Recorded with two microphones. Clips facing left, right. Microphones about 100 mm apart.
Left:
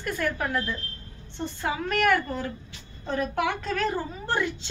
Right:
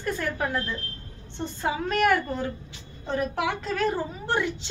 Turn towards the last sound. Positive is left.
turn(degrees=-15)  # may be behind; listen again after turning